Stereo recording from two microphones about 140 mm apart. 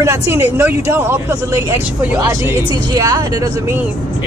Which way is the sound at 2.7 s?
25° right (ahead or behind).